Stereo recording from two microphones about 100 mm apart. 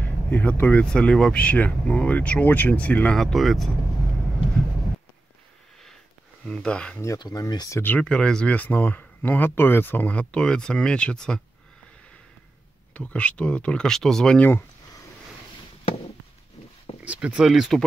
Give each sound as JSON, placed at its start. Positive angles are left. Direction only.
{"t": 0.0, "sound": "speech", "side_deg": 15}
{"t": 3.2, "sound": "speech", "side_deg": 0}
{"t": 6.4, "sound": "speech", "side_deg": 10}
{"t": 7.2, "sound": "speech", "side_deg": 40}
{"t": 8.0, "sound": "speech", "side_deg": 10}
{"t": 12.9, "sound": "speech", "side_deg": 10}
{"t": 17.0, "sound": "speech", "side_deg": -15}